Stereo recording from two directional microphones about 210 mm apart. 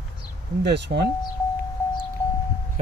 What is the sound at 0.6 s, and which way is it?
Speech, 50° right (ahead or behind).